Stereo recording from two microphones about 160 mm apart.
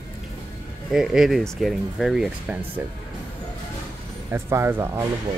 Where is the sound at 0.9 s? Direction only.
Centre (ahead or behind).